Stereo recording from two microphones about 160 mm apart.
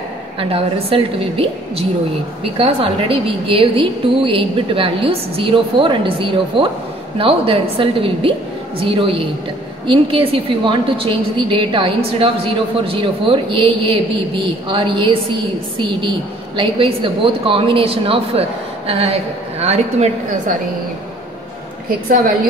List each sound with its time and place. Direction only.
0.4 s a woman's voice: 35° right (ahead or behind)
16.5 s a woman's voice: 35° right (ahead or behind)